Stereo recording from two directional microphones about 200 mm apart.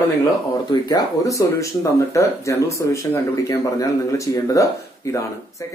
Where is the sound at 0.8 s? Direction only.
20° left (ahead or behind).